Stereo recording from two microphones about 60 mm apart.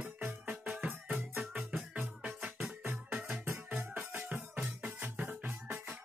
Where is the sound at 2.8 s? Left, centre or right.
Right.